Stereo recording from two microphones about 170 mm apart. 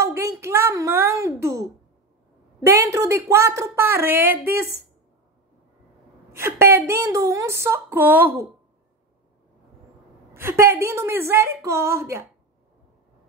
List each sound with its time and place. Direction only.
0.0 s a sound: 15° right (ahead or behind)
2.6 s a woman's voice: 15° right (ahead or behind)
6.3 s a woman's voice: 15° right (ahead or behind)
10.3 s a woman's voice: 15° right (ahead or behind)